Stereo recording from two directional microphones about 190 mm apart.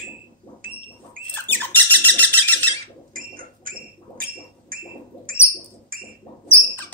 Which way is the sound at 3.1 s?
50° right (ahead or behind).